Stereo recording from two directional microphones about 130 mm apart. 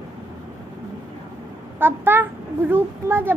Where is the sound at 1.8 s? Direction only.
15° right (ahead or behind).